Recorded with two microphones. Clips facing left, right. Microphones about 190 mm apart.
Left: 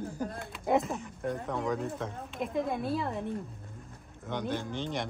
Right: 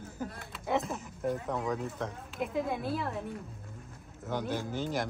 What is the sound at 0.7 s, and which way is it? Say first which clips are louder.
Speech: left 1 dB; centre (ahead or behind).